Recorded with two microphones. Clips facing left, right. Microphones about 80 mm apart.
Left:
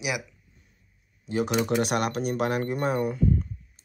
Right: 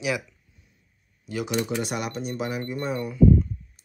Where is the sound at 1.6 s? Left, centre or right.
Left.